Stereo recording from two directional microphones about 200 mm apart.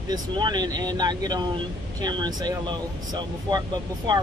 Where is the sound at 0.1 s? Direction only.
20° right (ahead or behind).